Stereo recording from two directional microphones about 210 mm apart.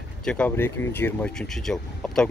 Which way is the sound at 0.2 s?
5° left (ahead or behind).